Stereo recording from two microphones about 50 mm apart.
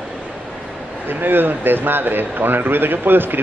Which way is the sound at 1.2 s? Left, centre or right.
Right.